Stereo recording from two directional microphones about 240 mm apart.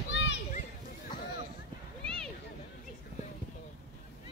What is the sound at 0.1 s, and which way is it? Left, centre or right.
Children playing, left.